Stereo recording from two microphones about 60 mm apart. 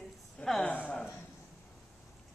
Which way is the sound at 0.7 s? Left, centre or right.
Left.